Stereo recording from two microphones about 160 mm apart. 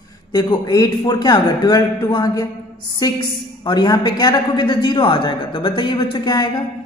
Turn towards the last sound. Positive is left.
turn(degrees=25)  # may be behind; listen again after turning